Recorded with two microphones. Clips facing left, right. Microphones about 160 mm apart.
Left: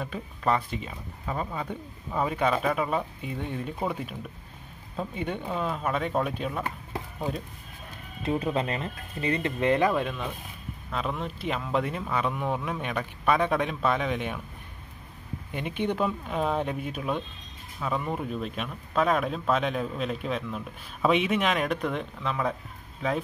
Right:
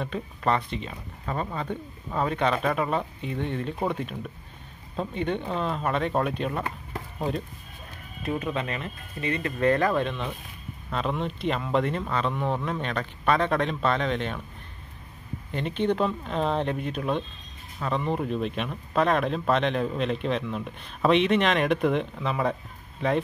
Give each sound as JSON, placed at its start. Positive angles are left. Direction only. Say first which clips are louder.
{"t": 0.0, "sound": "speech", "louder": "right 2 dB", "side_deg": 5}
{"t": 8.2, "sound": "speech", "louder": "left 2 dB", "side_deg": 25}
{"t": 9.6, "sound": "speech", "louder": "right 2 dB", "side_deg": 20}
{"t": 15.5, "sound": "speech", "louder": "right 3 dB", "side_deg": 10}